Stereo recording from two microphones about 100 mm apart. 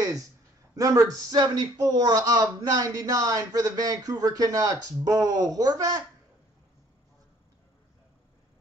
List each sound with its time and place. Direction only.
0.7 s a man's voice: 35° right (ahead or behind)